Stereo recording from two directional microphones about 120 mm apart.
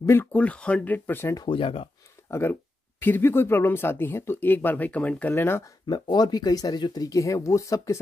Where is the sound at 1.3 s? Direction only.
40° left (ahead or behind).